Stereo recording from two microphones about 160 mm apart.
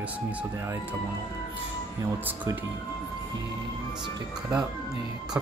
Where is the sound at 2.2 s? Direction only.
10° right (ahead or behind).